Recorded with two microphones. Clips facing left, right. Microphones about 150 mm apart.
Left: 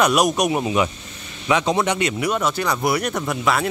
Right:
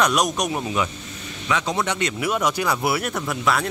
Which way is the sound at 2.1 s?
5° right (ahead or behind).